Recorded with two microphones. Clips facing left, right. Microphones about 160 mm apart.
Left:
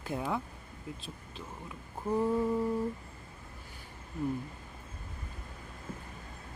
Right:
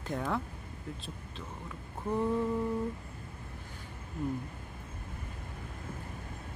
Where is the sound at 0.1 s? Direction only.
5° left (ahead or behind).